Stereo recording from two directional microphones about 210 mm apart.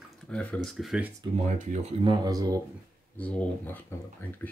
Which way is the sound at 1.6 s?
30° right (ahead or behind).